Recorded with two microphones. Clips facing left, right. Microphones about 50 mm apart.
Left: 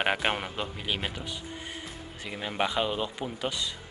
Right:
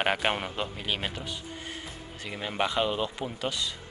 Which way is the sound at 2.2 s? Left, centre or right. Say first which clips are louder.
Even; centre.